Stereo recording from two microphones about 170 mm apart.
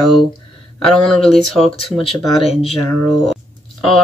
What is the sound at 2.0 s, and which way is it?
Speech, 35° left (ahead or behind).